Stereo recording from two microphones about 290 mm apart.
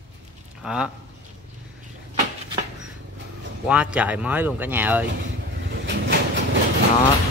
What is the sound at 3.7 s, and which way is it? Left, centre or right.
A man's voice, centre.